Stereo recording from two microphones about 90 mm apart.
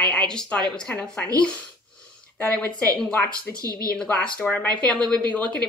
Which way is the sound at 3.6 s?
45° right (ahead or behind).